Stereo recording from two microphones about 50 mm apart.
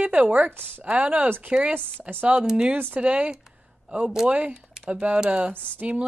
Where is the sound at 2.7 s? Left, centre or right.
Right.